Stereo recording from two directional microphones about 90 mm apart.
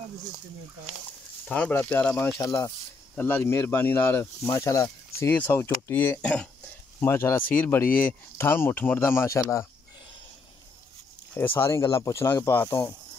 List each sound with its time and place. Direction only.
1.5 s speech: 20° left (ahead or behind)
2.4 s speech: 35° left (ahead or behind)
3.2 s speech: 25° left (ahead or behind)
6.2 s speech: 10° left (ahead or behind)
7.0 s speech: 30° left (ahead or behind)
11.3 s speech: 25° left (ahead or behind)